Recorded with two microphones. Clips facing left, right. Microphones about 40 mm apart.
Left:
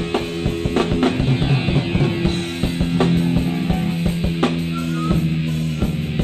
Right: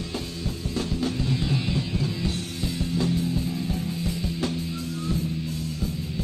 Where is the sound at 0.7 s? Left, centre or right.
Left.